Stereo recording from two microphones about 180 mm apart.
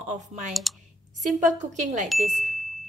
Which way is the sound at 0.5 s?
Centre (ahead or behind).